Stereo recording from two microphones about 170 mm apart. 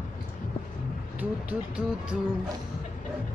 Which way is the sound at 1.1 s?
5° right (ahead or behind).